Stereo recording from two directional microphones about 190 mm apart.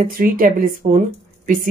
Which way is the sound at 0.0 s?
45° right (ahead or behind).